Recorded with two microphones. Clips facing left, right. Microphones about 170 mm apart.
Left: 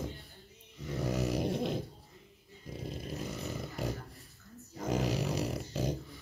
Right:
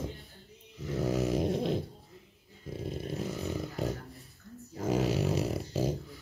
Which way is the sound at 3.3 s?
Centre (ahead or behind).